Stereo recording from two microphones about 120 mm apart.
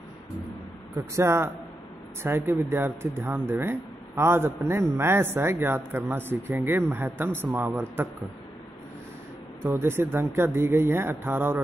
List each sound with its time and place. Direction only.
1.1 s speech: 20° right (ahead or behind)
9.6 s speech: 20° right (ahead or behind)